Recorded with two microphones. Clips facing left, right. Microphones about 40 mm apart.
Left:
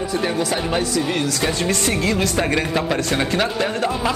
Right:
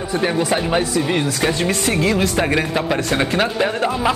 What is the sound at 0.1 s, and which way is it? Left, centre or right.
Speech, right.